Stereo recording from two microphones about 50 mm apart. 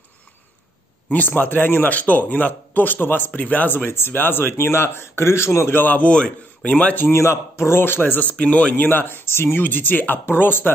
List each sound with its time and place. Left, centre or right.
1.1 s speech: left
2.0 s speech: left
3.7 s speech: left
5.8 s a man's voice: left
7.1 s speech: left
8.4 s a man's voice: left
8.8 s speech: left